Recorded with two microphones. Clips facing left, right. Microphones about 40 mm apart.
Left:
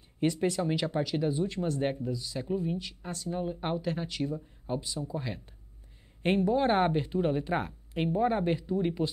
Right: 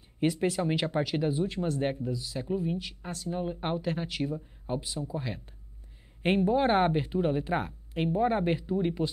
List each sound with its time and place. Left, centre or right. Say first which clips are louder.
0.2 s speech: right 1 dB; centre
0.6 s speech: right 1 dB; right
1.3 s speech: right 1 dB; centre
3.3 s speech: right 1 dB; centre
6.2 s speech: right 1 dB; centre